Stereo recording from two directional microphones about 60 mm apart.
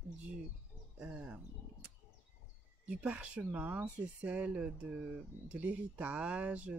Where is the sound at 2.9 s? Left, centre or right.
Right.